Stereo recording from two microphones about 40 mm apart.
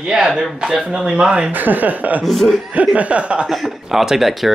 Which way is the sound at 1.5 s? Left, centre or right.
Right.